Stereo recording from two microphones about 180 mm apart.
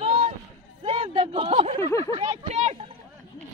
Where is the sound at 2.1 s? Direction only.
35° right (ahead or behind).